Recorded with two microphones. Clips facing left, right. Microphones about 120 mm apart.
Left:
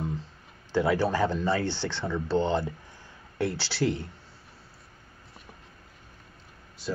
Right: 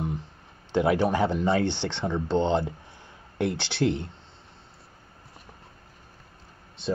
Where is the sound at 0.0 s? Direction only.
20° right (ahead or behind).